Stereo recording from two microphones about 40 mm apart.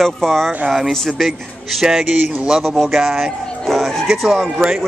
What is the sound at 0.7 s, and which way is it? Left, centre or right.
A man's voice, centre.